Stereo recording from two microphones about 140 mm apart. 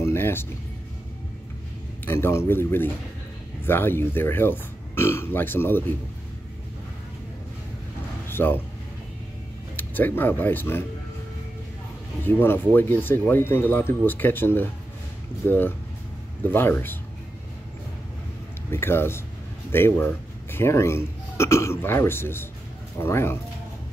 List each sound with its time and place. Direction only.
0.0 s music: 15° left (ahead or behind)
2.0 s speech: 15° left (ahead or behind)
8.3 s a sound: 15° left (ahead or behind)
9.8 s speech: 15° left (ahead or behind)
12.2 s speech: 15° left (ahead or behind)
18.7 s speech: 15° left (ahead or behind)